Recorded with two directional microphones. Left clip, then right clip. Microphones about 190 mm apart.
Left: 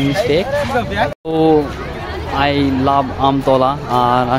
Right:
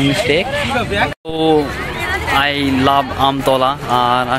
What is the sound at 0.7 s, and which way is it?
Speech, 50° left (ahead or behind).